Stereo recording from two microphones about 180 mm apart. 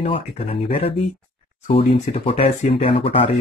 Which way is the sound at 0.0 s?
35° left (ahead or behind).